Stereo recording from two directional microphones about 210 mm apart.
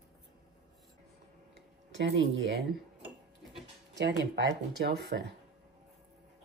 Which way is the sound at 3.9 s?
55° right (ahead or behind).